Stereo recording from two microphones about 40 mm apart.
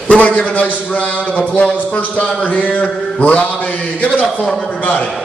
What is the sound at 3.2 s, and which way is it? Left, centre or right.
A man's voice, left.